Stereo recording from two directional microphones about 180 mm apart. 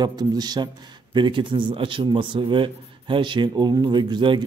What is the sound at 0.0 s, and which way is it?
A man's voice, 20° right (ahead or behind).